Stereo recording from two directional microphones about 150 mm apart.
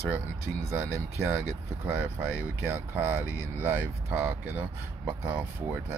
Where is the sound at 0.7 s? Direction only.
20° right (ahead or behind).